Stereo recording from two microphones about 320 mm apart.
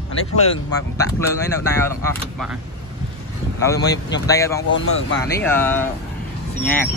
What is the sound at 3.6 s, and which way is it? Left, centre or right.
Speech, centre.